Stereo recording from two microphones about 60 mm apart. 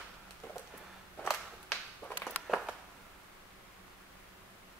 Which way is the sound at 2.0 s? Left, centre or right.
Left.